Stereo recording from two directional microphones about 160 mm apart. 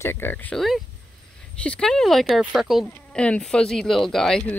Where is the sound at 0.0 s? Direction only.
15° left (ahead or behind).